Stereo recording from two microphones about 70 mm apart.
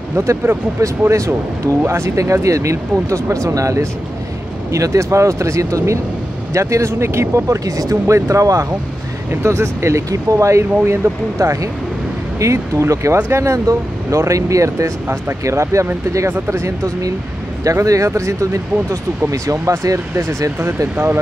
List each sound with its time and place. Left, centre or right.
0.1 s speech: right
20.9 s speech: right